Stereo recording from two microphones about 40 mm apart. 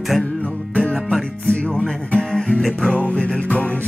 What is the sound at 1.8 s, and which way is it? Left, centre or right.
Music, left.